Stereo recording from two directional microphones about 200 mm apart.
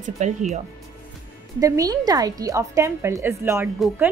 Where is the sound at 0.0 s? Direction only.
40° right (ahead or behind).